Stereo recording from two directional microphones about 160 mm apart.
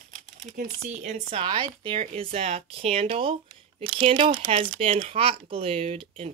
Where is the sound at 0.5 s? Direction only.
45° right (ahead or behind).